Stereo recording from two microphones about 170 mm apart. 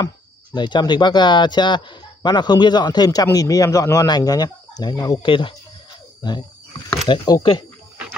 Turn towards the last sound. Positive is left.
turn(degrees=25)  # may be behind; listen again after turning